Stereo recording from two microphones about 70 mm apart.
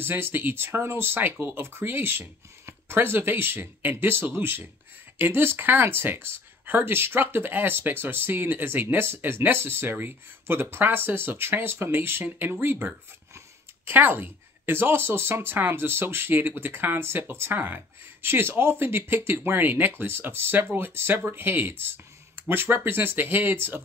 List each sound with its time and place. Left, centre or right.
0.0 s speech: right